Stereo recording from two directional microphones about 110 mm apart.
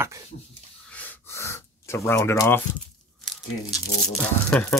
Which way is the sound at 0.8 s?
15° left (ahead or behind).